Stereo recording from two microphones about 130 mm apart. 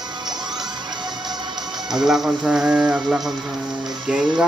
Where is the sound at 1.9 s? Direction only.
5° right (ahead or behind).